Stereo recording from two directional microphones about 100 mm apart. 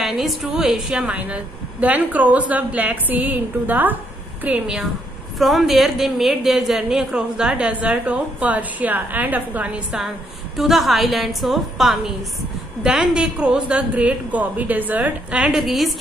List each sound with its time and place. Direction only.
0.0 s a woman's voice: centre (ahead or behind)
1.1 s a woman's voice: 15° right (ahead or behind)
4.5 s a woman's voice: 5° right (ahead or behind)
10.6 s a woman's voice: centre (ahead or behind)